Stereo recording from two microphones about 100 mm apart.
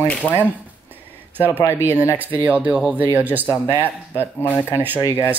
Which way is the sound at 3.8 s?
20° left (ahead or behind).